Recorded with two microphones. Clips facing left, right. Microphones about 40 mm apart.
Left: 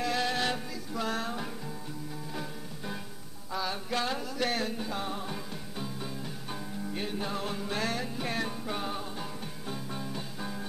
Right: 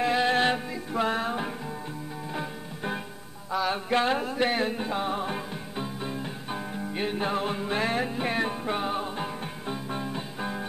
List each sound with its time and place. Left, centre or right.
0.0 s music: right